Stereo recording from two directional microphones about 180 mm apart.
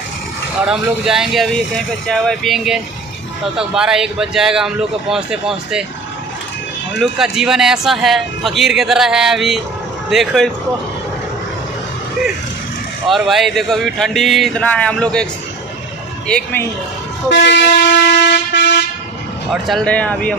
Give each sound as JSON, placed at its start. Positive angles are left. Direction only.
{"t": 0.7, "sound": "a man's voice", "side_deg": -5}
{"t": 7.0, "sound": "a man's voice", "side_deg": 0}
{"t": 13.1, "sound": "a man's voice", "side_deg": 0}
{"t": 16.3, "sound": "a man's voice", "side_deg": 5}
{"t": 17.3, "sound": "speech", "side_deg": 80}
{"t": 19.5, "sound": "speech", "side_deg": 5}